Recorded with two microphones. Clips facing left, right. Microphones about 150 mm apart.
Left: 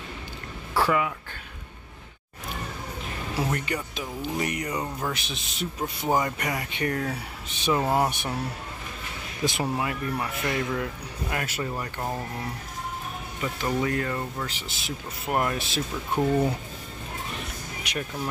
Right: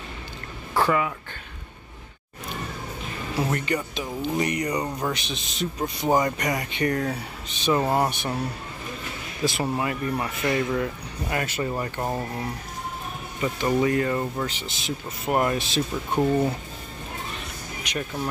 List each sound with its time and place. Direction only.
0.7 s speech: 5° left (ahead or behind)
3.5 s a man's voice: 5° left (ahead or behind)
9.4 s speech: 20° left (ahead or behind)
9.8 s speech: centre (ahead or behind)
11.7 s speech: 10° right (ahead or behind)
13.4 s speech: 5° right (ahead or behind)
17.8 s speech: centre (ahead or behind)